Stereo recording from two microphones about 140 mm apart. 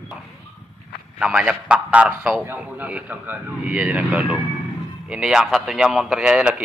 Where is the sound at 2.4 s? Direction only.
15° right (ahead or behind).